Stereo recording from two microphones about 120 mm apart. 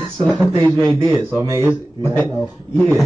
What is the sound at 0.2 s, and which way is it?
Speech, 5° left (ahead or behind).